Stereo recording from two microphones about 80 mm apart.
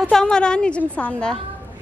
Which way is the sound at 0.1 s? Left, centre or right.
Centre.